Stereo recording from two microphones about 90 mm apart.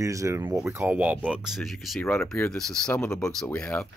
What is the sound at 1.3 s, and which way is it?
Speech, 5° right (ahead or behind).